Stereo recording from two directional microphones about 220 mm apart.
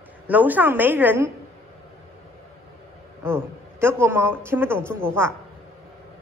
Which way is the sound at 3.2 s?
10° right (ahead or behind).